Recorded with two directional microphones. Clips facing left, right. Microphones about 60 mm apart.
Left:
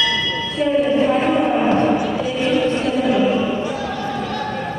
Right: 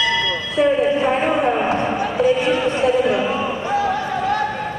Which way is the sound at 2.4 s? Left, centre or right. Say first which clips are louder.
Even; right.